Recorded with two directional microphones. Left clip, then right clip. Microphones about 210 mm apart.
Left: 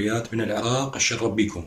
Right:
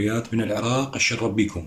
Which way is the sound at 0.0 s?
5° right (ahead or behind).